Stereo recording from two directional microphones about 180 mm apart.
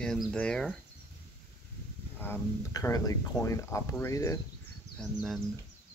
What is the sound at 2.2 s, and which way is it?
Speech, 15° left (ahead or behind).